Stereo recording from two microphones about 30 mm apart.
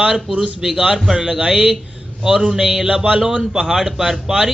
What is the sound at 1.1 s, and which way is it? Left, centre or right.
A man's voice, right.